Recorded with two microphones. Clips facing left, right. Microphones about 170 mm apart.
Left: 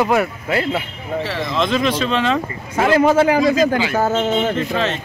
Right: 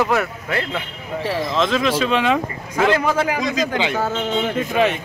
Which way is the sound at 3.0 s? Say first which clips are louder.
Left 7 dB; 25° left (ahead or behind).